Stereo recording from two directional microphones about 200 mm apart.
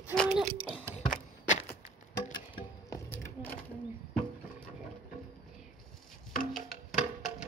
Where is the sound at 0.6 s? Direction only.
10° right (ahead or behind).